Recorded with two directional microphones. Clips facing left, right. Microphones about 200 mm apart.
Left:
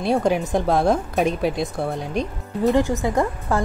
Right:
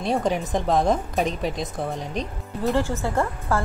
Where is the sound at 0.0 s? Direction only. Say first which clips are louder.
Left 4 dB; 5° left (ahead or behind).